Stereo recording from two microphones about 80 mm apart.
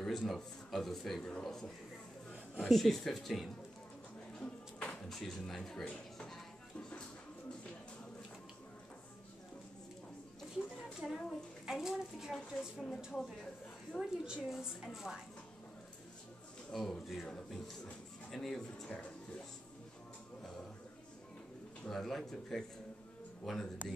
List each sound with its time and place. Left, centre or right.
0.0 s a child's voice: centre
4.4 s music: centre
5.1 s speech: centre
11.0 s a child's voice: centre
13.9 s a child's voice: centre
16.7 s a child's voice: centre
18.9 s music: centre
21.8 s a child's voice: centre